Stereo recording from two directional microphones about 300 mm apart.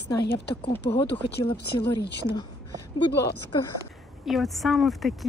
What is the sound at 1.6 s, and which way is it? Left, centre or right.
Speech, left.